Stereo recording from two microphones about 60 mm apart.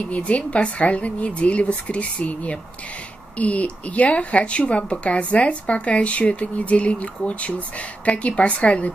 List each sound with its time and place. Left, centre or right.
0.1 s speech: left